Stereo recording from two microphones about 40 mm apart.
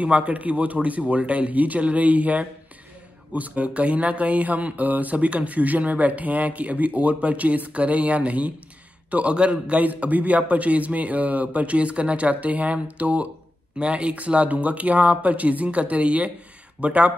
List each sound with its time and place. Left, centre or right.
0.0 s a man's voice: right
9.8 s speech: right
13.7 s speech: right